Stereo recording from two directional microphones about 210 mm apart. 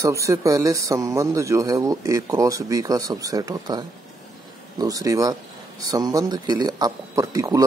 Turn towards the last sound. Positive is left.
turn(degrees=-15)  # may be behind; listen again after turning